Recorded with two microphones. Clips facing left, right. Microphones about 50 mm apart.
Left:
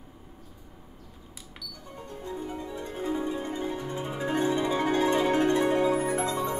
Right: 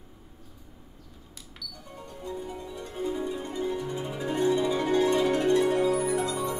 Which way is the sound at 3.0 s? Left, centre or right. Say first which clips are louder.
Even; centre.